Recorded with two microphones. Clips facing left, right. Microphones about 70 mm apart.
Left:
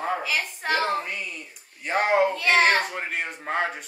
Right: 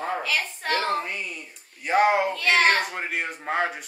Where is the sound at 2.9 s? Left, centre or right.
Centre.